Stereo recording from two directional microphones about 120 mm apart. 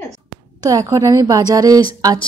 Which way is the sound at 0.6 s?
30° right (ahead or behind).